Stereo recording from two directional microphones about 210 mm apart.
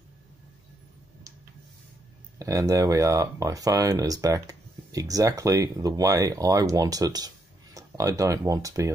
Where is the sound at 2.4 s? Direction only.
15° right (ahead or behind).